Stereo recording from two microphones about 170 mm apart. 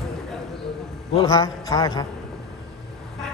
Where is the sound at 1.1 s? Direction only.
25° left (ahead or behind).